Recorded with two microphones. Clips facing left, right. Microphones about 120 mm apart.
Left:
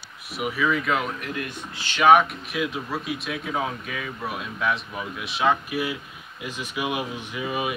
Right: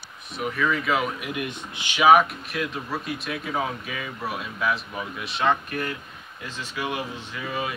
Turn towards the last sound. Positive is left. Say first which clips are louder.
# left 2 dB
turn(degrees=15)  # may be behind; listen again after turning